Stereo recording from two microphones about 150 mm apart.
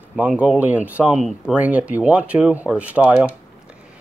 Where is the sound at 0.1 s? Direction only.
10° right (ahead or behind).